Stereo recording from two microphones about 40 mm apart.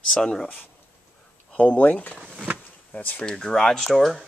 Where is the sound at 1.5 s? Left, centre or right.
Left.